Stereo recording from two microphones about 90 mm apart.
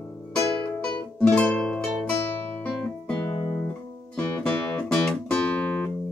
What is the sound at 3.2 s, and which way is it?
Music, 50° left (ahead or behind).